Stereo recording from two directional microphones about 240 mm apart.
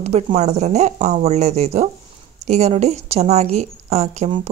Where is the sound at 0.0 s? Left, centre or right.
Right.